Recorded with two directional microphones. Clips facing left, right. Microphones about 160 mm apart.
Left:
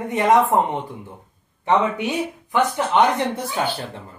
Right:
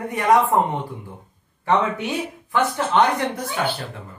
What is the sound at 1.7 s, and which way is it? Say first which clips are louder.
Speech: left 1 dB; 15° left (ahead or behind).